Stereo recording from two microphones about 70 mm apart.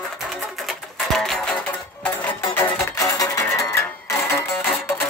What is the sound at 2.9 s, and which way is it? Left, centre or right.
Music, left.